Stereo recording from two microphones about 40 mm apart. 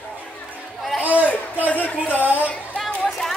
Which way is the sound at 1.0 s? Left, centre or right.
Right.